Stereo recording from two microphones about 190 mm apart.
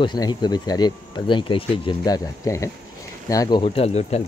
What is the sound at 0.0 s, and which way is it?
Speech, 25° left (ahead or behind).